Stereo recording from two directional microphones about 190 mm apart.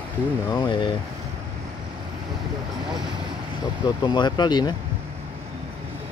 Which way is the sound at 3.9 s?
20° left (ahead or behind).